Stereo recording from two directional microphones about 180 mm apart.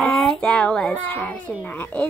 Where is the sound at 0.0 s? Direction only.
Centre (ahead or behind).